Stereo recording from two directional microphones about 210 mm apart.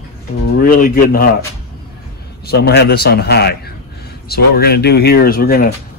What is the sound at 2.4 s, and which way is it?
A man's voice, 50° left (ahead or behind).